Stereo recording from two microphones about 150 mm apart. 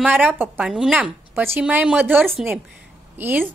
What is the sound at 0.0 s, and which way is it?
A woman's voice, 10° right (ahead or behind).